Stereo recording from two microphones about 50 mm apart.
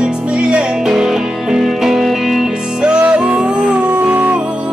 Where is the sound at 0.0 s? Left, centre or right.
Centre.